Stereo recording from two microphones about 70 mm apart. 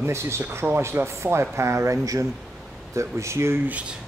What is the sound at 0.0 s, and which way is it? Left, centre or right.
Speech, right.